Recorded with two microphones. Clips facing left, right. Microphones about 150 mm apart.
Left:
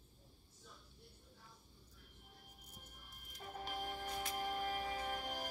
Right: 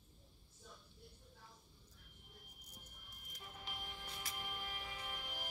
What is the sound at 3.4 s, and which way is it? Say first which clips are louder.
Music: left 8 dB; 45° left (ahead or behind).